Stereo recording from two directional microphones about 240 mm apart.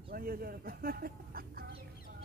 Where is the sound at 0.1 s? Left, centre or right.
Right.